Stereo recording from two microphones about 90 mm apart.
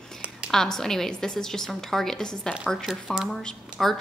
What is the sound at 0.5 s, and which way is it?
A woman's voice, 5° left (ahead or behind).